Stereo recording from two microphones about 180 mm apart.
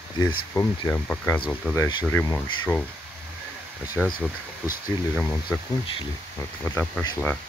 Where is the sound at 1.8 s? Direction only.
25° left (ahead or behind).